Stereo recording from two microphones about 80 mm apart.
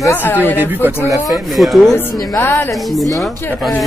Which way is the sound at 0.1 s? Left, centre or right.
Left.